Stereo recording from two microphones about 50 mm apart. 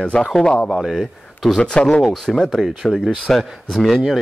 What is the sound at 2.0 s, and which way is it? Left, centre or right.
A man's voice, centre.